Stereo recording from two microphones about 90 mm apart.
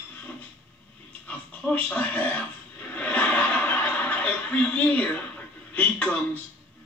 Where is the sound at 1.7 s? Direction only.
20° left (ahead or behind).